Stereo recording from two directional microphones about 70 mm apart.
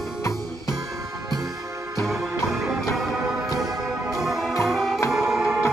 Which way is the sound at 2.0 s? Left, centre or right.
Centre.